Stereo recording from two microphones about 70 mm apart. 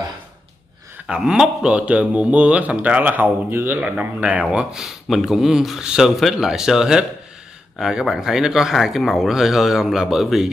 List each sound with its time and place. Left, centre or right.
1.0 s a man's voice: centre; by 3.8 s right
3.8 s speech: centre